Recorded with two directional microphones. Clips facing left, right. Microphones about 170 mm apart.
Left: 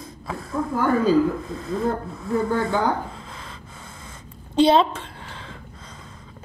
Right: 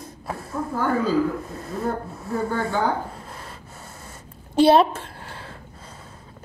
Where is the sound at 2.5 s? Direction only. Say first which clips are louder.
Left 3 dB; 10° left (ahead or behind).